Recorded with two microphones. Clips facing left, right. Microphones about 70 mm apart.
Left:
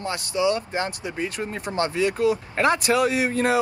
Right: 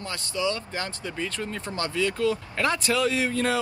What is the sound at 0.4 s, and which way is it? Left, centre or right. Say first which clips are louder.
Speech: left 5 dB; left.